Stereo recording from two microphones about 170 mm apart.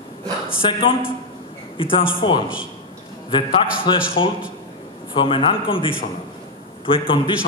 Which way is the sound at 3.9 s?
25° left (ahead or behind).